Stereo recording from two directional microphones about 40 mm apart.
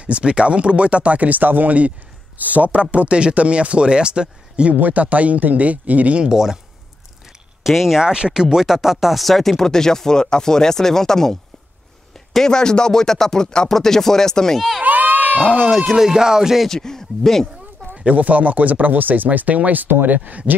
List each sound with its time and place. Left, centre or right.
0.0 s speech: right
1.4 s speech: right
4.7 s speech: right
6.2 s music: centre
7.6 s speech: centre
8.0 s speech: centre
14.8 s crowd: right
15.4 s speech: left
15.7 s speech: centre
16.0 s music: centre
16.6 s speech: centre
17.8 s a sound: centre
18.1 s speech: right
20.2 s speech: right